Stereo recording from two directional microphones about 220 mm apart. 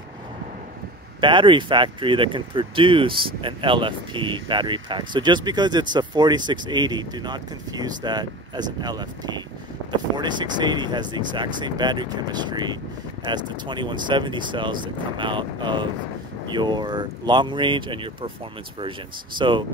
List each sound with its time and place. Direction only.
1.2 s speech: 20° right (ahead or behind)